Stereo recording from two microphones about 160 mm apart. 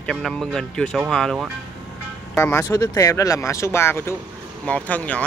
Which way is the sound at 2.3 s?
15° left (ahead or behind).